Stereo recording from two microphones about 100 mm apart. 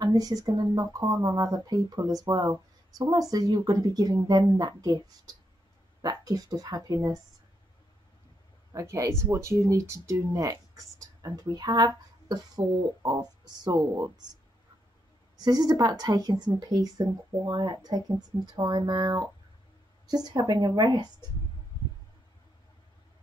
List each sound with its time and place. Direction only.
0.0 s speech: 40° right (ahead or behind)
8.7 s speech: 30° right (ahead or behind)
11.2 s speech: 45° right (ahead or behind)
15.3 s speech: 40° right (ahead or behind)